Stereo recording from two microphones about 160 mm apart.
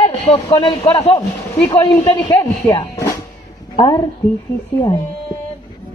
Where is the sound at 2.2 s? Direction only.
20° left (ahead or behind).